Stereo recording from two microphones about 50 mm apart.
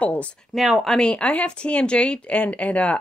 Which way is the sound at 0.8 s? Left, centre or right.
Centre.